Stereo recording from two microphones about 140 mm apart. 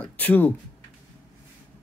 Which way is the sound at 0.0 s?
10° left (ahead or behind).